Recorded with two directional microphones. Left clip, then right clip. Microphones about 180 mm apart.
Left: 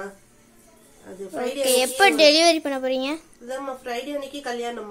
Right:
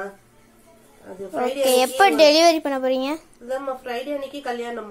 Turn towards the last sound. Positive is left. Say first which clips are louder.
# right 1 dB
turn(degrees=15)  # may be behind; listen again after turning